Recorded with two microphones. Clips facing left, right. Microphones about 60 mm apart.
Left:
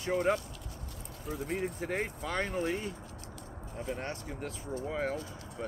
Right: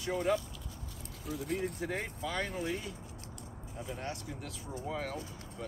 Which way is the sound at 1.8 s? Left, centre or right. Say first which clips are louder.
Left 2 dB; left.